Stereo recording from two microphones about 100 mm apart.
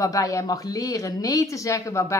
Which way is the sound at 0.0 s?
35° left (ahead or behind).